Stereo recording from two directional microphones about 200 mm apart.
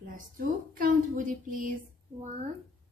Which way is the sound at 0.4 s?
45° right (ahead or behind).